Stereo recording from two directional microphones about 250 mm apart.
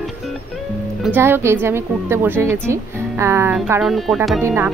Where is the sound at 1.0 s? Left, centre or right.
Centre.